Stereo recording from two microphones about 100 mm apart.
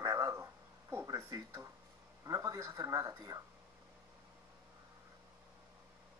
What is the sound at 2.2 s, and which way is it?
Speech, 30° right (ahead or behind).